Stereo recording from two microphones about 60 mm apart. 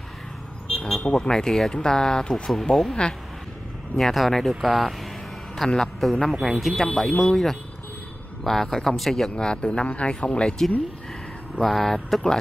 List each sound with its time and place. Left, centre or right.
0.7 s vehicle: centre
1.0 s speech: centre
9.3 s speech: centre
11.5 s speech: centre